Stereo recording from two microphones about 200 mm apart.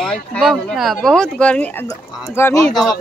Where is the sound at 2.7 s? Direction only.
Centre (ahead or behind).